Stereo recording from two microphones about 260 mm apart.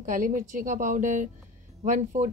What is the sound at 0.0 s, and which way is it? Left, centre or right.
A woman's voice, right.